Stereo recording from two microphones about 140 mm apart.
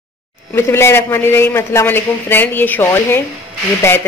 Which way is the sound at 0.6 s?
20° left (ahead or behind).